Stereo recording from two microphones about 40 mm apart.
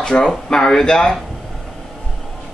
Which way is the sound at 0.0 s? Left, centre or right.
Left.